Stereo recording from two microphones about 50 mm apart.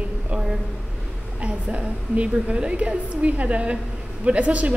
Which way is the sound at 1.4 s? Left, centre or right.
Right.